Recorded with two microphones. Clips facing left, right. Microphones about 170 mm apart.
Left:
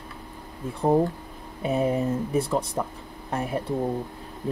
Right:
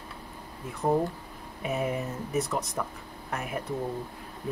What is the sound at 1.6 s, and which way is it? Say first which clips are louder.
Speech: left 6 dB; 35° left (ahead or behind).